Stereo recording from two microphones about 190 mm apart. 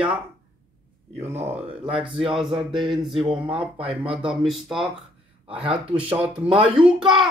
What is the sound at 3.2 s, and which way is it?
Speech, 30° right (ahead or behind).